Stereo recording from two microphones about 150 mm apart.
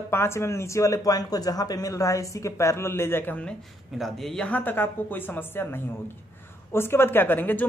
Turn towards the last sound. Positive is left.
turn(degrees=10)  # may be behind; listen again after turning